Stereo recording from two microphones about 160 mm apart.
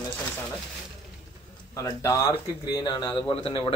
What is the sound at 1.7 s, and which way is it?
Speech, 20° left (ahead or behind).